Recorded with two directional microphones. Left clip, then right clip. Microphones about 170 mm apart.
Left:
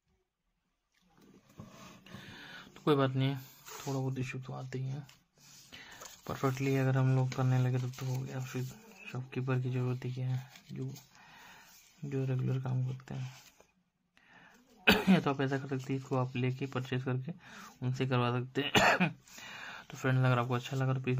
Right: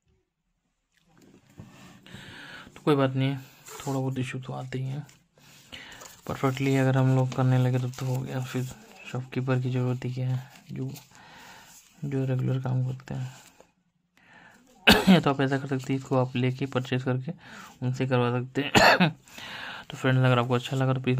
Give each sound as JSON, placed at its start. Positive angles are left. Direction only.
{"t": 2.0, "sound": "a sound", "side_deg": -25}
{"t": 3.8, "sound": "speech", "side_deg": -20}
{"t": 14.9, "sound": "speech", "side_deg": -30}